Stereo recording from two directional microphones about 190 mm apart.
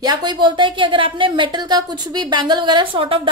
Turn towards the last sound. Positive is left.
turn(degrees=-25)  # may be behind; listen again after turning